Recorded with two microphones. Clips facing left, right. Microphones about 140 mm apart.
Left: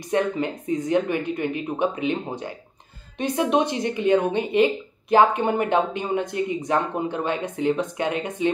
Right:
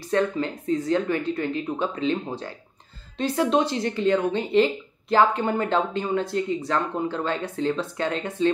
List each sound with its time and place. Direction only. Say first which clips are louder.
0.1 s a woman's voice: even; 15° left (ahead or behind)